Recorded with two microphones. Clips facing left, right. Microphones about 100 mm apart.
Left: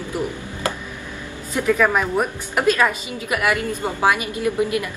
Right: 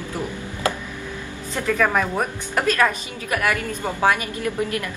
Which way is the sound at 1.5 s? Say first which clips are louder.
Left 2 dB; 10° left (ahead or behind).